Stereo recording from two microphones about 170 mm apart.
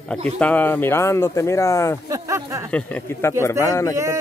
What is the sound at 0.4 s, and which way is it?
Speech, 10° left (ahead or behind).